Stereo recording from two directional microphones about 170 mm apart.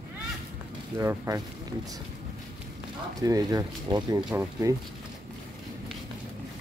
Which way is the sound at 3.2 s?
20° right (ahead or behind).